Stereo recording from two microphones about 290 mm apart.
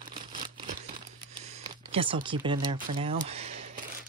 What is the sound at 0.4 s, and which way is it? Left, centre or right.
Tearing, right.